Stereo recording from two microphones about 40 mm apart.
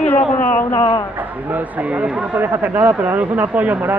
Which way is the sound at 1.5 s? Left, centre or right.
Right.